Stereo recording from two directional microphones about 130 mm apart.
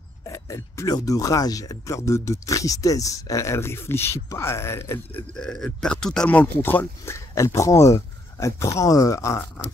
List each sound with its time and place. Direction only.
0.3 s speech: 25° left (ahead or behind)
5.3 s speech: 5° left (ahead or behind); by 9.4 s 25° left (ahead or behind)